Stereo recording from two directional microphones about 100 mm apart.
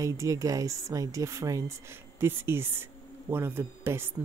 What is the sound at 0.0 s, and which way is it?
Speech, 35° right (ahead or behind).